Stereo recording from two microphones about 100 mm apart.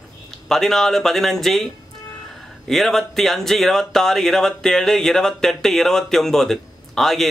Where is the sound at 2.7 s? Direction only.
5° left (ahead or behind).